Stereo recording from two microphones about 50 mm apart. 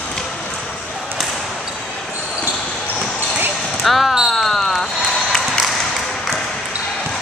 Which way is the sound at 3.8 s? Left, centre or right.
Centre.